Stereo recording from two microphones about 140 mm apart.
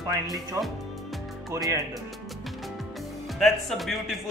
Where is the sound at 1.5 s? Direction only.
25° right (ahead or behind).